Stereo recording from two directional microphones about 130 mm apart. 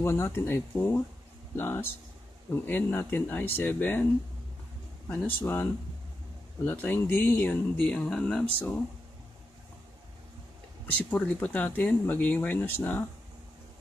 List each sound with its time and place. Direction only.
0.0 s speech: 20° left (ahead or behind)
5.1 s speech: 15° left (ahead or behind)
10.9 s speech: 10° left (ahead or behind)